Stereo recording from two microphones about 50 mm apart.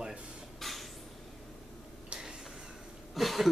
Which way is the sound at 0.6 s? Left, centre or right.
Centre.